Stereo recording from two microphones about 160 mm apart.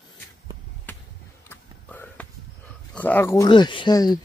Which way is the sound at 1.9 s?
10° left (ahead or behind).